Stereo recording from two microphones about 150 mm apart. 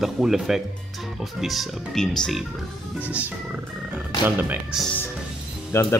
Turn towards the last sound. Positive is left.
turn(degrees=15)  # may be behind; listen again after turning